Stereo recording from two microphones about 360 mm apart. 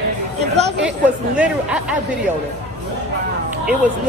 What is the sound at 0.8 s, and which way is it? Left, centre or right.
Speech, centre.